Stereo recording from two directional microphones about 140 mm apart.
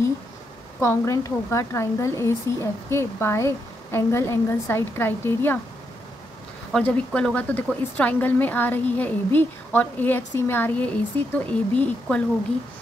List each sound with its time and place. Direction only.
0.7 s speech: 20° left (ahead or behind)
6.7 s a woman's voice: 10° left (ahead or behind)